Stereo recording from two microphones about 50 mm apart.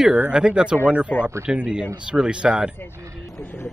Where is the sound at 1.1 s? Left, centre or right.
Left.